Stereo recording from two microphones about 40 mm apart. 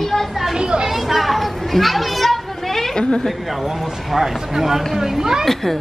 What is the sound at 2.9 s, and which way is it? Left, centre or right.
Speech, left.